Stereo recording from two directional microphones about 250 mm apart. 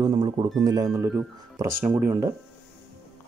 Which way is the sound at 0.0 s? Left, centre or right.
Centre.